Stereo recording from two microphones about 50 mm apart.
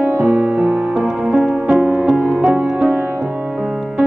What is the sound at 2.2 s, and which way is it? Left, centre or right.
Music, right.